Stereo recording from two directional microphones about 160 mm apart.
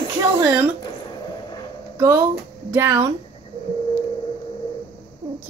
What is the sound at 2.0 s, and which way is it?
Speech, 20° right (ahead or behind).